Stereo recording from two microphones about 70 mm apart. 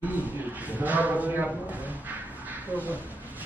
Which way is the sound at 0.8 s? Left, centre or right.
Right.